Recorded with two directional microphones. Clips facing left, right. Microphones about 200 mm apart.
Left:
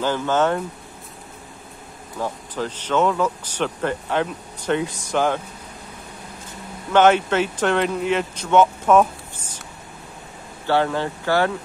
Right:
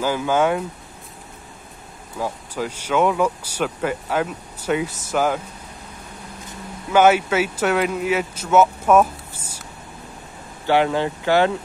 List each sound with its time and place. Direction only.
0.0 s speech: 10° right (ahead or behind)
2.1 s speech: 10° right (ahead or behind)
6.9 s speech: 10° right (ahead or behind)
10.7 s speech: 15° right (ahead or behind)